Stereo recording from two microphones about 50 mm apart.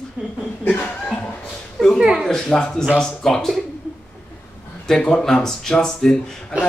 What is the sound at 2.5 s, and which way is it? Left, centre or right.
Speech, centre.